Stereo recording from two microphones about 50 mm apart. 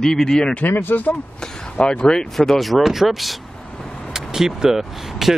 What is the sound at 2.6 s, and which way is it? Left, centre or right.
Speech, centre.